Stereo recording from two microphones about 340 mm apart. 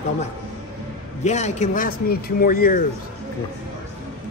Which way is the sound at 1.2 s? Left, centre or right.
Centre.